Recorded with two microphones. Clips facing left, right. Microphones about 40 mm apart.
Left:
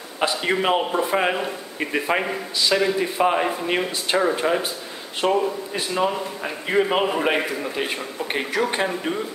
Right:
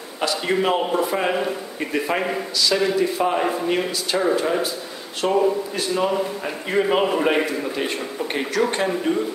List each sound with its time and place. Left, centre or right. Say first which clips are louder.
0.2 s a man's voice: even; centre